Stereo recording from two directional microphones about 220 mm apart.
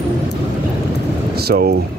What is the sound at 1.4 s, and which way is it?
Speech, 45° right (ahead or behind).